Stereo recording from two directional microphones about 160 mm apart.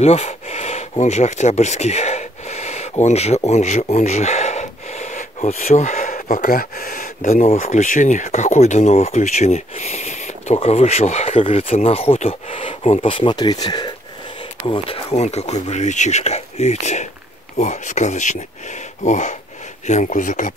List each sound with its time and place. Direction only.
0.0 s speech: 40° left (ahead or behind)
15.1 s speech: 45° left (ahead or behind)